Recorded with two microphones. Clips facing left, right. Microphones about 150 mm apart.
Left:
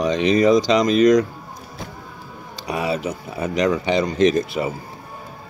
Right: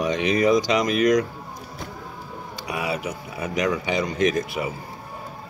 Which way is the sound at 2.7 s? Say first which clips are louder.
Left 4 dB; 25° left (ahead or behind).